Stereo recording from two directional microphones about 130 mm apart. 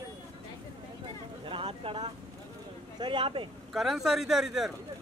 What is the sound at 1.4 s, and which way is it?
Speech, 45° right (ahead or behind).